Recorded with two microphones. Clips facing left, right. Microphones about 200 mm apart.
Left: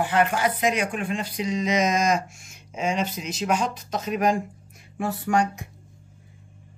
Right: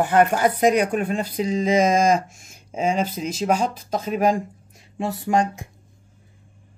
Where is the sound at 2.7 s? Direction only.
35° right (ahead or behind).